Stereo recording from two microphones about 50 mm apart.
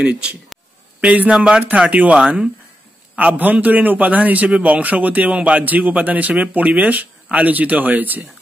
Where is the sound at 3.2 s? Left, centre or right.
Right.